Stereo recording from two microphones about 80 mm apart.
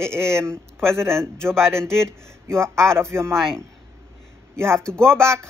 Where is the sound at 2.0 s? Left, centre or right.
Right.